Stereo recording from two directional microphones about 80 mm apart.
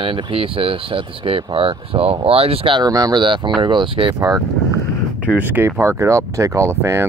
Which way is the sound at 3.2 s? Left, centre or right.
Right.